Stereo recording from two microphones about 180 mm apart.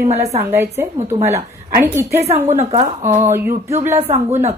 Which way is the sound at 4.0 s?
40° right (ahead or behind).